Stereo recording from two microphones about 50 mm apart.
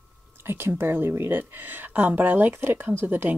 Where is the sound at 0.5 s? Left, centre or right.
Right.